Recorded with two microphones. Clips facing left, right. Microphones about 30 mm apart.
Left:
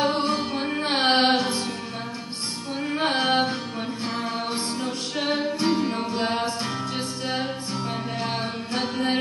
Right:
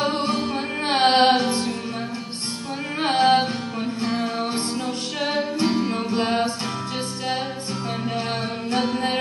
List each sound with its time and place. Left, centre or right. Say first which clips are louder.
0.0 s music: even; centre
1.3 s music: right 3 dB; right
3.2 s music: right 7 dB; right
4.7 s music: right 2 dB; centre
8.8 s music: right 2 dB; right